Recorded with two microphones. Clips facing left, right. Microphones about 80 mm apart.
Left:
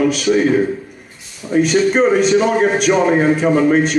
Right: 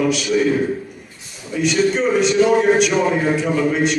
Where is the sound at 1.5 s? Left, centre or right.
Left.